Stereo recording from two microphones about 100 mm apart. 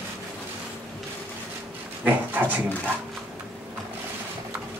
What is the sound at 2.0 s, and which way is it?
Dog, 15° right (ahead or behind).